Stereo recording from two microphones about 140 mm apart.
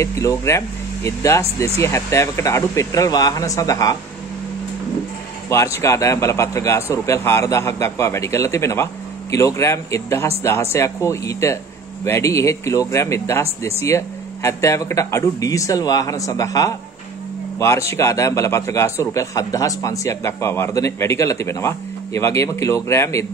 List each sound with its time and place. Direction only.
0.0 s a man's voice: 20° left (ahead or behind)
5.8 s a man's voice: 20° left (ahead or behind)